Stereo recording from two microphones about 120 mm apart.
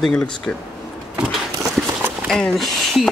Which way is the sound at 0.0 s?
10° left (ahead or behind).